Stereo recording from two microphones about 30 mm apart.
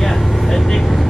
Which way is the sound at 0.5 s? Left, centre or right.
Centre.